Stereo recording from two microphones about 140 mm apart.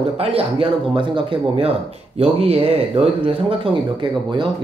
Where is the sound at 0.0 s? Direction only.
45° right (ahead or behind).